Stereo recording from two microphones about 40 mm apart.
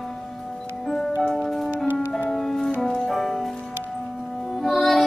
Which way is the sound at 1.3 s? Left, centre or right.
Centre.